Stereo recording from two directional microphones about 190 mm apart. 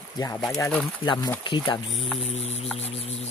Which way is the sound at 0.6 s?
10° left (ahead or behind).